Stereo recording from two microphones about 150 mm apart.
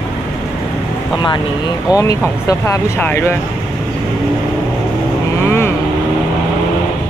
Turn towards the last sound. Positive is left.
turn(degrees=15)  # may be behind; listen again after turning